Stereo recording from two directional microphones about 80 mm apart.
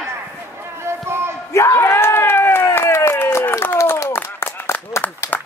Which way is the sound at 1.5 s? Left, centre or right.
Left.